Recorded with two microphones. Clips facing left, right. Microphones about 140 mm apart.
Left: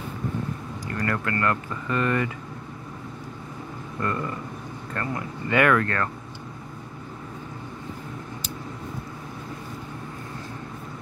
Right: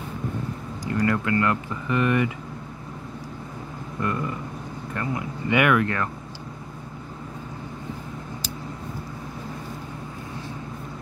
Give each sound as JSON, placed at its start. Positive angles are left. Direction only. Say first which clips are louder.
{"t": 0.8, "sound": "speech", "louder": "right 5 dB", "side_deg": -15}
{"t": 4.0, "sound": "speech", "louder": "right 1 dB", "side_deg": -15}